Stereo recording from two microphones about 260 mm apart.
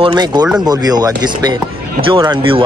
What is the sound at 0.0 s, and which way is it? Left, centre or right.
Speech, centre.